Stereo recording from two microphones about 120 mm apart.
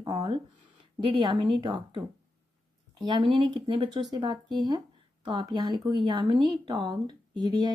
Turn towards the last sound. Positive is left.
turn(degrees=-35)  # may be behind; listen again after turning